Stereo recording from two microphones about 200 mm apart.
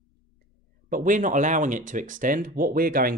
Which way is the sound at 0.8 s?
45° right (ahead or behind).